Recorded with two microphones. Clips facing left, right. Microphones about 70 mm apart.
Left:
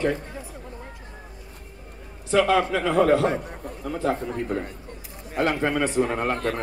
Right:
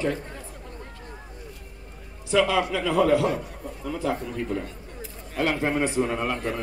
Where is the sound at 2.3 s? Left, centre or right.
Left.